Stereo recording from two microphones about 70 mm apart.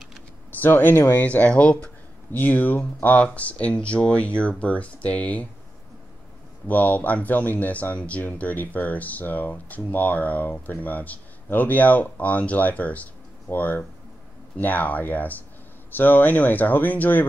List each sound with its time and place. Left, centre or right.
0.6 s speech: left
1.2 s speech: left
6.7 s speech: left